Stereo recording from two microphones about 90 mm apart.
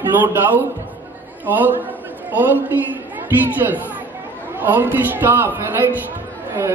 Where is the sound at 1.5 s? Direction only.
20° right (ahead or behind).